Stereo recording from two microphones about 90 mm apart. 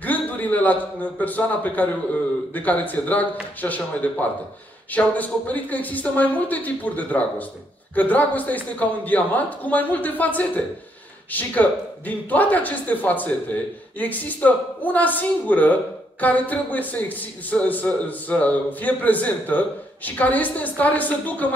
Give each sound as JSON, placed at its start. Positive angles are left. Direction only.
{"t": 0.0, "sound": "a man's voice", "side_deg": 20}